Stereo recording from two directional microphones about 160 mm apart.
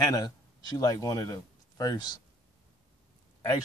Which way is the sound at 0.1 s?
25° left (ahead or behind).